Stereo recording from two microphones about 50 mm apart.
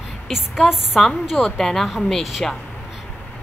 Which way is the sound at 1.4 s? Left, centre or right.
Centre.